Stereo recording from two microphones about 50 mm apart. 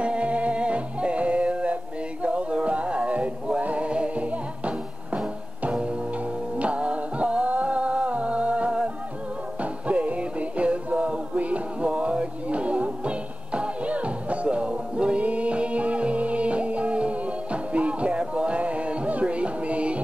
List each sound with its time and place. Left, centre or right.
0.0 s music: right